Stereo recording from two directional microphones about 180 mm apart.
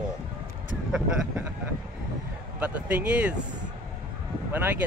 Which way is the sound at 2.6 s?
10° right (ahead or behind).